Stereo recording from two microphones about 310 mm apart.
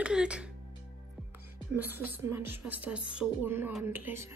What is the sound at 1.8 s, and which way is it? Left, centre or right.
A woman's voice, centre.